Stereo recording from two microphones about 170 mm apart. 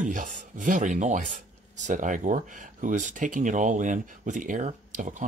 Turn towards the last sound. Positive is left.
turn(degrees=-50)  # may be behind; listen again after turning